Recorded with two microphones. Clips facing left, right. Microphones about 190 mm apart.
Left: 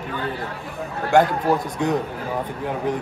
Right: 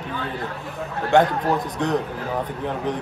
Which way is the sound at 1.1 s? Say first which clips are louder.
Even; centre (ahead or behind).